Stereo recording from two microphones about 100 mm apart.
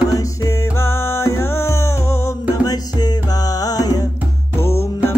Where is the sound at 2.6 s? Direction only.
40° left (ahead or behind).